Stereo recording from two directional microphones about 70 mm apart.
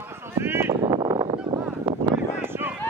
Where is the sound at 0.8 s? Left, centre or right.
Right.